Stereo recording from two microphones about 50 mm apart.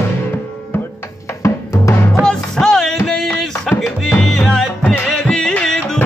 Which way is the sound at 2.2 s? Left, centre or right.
Centre.